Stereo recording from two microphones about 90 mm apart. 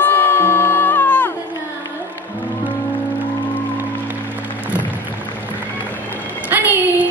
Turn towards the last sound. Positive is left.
turn(degrees=-20)  # may be behind; listen again after turning